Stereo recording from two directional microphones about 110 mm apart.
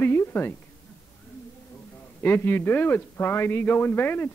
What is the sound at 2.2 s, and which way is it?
Speech, 20° left (ahead or behind).